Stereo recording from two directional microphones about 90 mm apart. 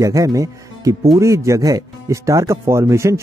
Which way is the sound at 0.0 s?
40° right (ahead or behind).